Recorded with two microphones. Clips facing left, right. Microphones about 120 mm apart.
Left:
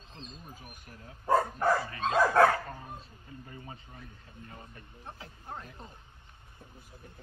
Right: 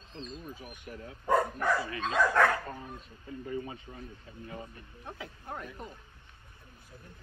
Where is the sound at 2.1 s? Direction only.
25° left (ahead or behind).